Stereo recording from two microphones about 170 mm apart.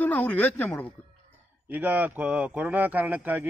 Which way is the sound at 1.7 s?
10° right (ahead or behind).